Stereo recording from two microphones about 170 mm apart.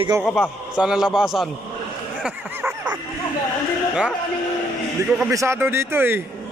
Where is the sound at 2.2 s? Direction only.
5° right (ahead or behind).